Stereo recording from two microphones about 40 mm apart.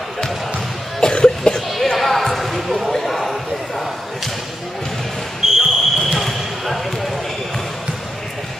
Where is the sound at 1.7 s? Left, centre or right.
Centre.